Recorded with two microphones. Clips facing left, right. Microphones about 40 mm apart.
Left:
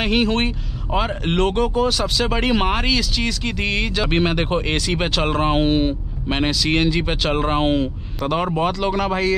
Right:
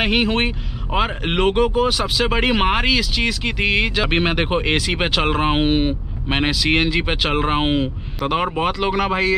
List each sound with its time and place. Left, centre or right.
0.0 s speech: centre